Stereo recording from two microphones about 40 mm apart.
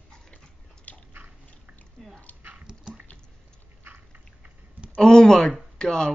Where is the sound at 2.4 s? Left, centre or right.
Right.